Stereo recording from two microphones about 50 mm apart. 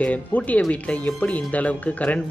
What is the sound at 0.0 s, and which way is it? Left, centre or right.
Speech, left.